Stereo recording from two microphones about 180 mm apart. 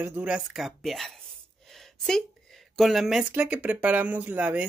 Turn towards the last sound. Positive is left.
turn(degrees=-5)  # may be behind; listen again after turning